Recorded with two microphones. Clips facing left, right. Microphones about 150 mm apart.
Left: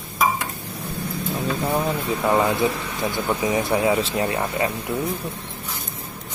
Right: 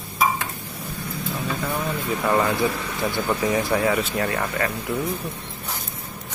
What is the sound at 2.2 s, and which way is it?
Speech, 20° left (ahead or behind).